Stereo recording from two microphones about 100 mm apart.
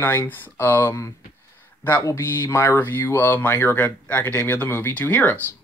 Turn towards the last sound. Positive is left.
turn(degrees=15)  # may be behind; listen again after turning